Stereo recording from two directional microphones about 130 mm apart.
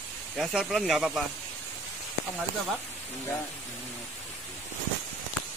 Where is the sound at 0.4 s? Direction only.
Centre (ahead or behind).